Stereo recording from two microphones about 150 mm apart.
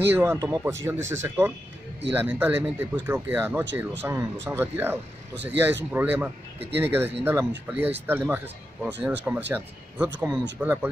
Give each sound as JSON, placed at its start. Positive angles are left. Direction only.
{"t": 0.0, "sound": "speech", "side_deg": -15}